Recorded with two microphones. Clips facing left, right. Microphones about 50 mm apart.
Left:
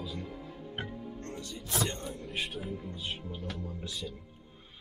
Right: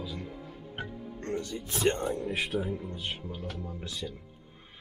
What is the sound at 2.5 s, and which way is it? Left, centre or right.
Speech, right.